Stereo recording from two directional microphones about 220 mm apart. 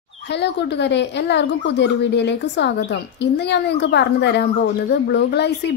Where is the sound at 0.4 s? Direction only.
50° left (ahead or behind).